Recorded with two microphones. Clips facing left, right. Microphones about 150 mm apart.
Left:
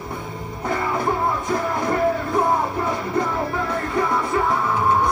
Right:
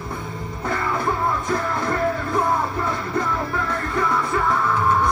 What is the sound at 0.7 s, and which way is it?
Music, 15° left (ahead or behind).